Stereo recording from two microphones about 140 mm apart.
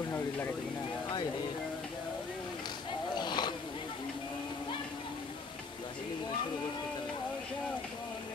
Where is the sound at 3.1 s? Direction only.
30° left (ahead or behind).